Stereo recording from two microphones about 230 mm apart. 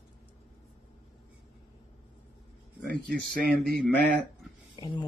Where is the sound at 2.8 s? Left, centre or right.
Centre.